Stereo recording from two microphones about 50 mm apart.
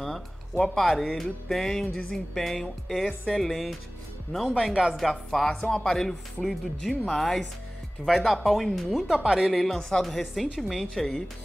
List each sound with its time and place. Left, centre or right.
0.0 s speech: centre
4.3 s speech: centre
4.9 s speech: centre
9.5 s speech: centre
10.0 s speech: centre
10.8 s speech: centre